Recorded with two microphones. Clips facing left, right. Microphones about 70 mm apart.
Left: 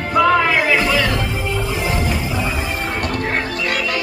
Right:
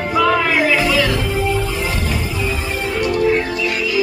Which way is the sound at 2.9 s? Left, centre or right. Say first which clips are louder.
Right 8 dB; left.